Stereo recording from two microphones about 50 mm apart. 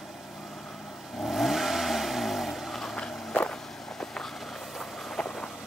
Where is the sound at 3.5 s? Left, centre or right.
Centre.